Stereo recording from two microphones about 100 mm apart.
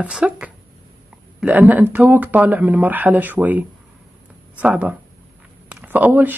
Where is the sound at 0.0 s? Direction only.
10° right (ahead or behind).